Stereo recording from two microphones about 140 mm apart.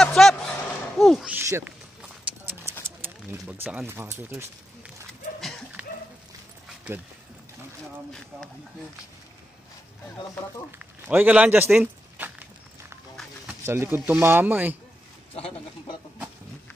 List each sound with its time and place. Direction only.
0.0 s a sound: centre (ahead or behind)
0.9 s speech: centre (ahead or behind)
1.3 s a sound: 10° right (ahead or behind)
3.6 s speech: 15° right (ahead or behind)
11.1 s speech: 10° right (ahead or behind)
13.5 s speech: 15° right (ahead or behind)